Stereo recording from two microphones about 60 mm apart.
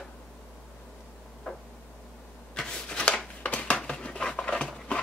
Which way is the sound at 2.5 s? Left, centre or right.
Centre.